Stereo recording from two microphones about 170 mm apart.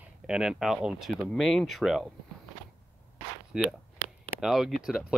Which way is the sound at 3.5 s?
5° right (ahead or behind).